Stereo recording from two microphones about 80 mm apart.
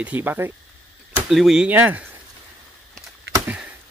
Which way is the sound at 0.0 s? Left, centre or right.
Right.